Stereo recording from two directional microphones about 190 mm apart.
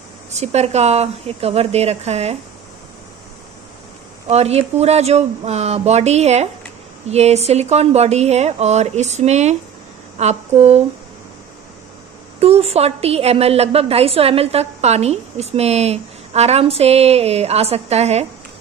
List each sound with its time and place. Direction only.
0.3 s a woman's voice: 35° right (ahead or behind)
4.3 s a woman's voice: 35° right (ahead or behind)
12.4 s a woman's voice: 30° right (ahead or behind)